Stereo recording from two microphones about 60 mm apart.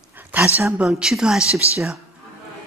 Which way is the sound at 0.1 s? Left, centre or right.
Right.